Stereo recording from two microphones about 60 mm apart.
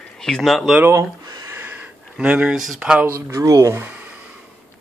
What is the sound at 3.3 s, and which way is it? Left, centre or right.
Speech, right.